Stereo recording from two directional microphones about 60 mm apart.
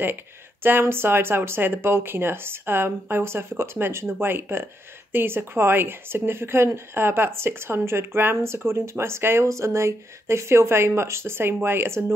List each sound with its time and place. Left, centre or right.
0.0 s a woman's voice: right